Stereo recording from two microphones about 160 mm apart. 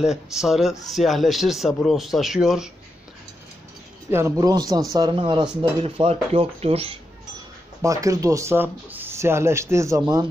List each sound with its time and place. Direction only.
0.0 s speech: 5° right (ahead or behind)
4.1 s speech: 20° right (ahead or behind); by 7.0 s 40° right (ahead or behind)
7.8 s speech: 20° right (ahead or behind)